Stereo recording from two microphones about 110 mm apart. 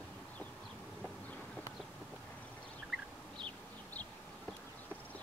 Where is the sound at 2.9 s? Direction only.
5° right (ahead or behind).